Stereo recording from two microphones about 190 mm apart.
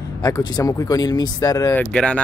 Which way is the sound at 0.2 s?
20° left (ahead or behind).